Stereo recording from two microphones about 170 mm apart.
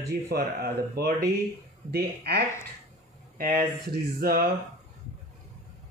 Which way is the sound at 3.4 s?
55° right (ahead or behind).